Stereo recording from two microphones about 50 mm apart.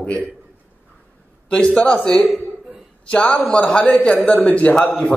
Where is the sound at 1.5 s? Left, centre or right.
Left.